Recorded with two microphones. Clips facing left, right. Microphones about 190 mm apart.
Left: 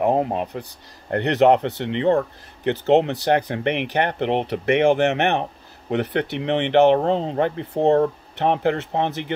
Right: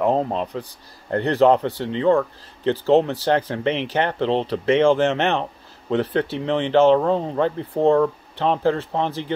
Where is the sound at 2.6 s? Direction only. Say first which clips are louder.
Even; 20° left (ahead or behind).